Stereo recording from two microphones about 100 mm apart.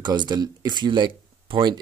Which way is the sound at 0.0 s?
50° right (ahead or behind).